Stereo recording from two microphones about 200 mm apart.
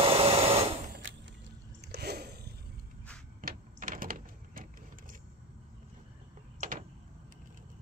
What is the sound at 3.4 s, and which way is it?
Door, 45° right (ahead or behind).